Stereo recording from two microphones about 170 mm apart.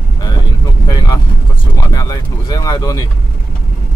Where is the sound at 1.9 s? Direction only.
20° left (ahead or behind).